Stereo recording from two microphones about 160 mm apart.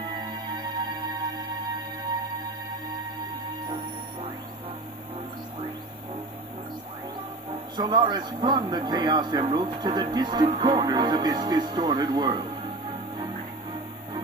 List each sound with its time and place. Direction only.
0.2 s music: 25° right (ahead or behind)
7.7 s a man's voice: 30° right (ahead or behind)